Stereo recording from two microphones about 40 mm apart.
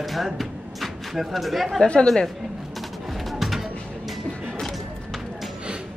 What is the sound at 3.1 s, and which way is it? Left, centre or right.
Music, centre.